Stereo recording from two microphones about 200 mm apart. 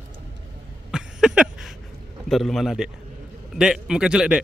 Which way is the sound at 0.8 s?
5° right (ahead or behind).